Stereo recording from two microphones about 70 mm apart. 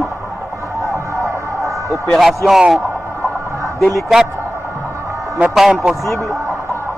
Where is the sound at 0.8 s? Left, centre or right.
Right.